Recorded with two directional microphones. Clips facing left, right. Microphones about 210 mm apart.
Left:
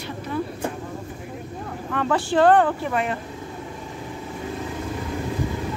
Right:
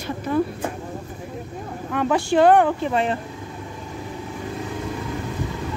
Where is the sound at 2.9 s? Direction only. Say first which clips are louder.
Right 3 dB; 30° right (ahead or behind).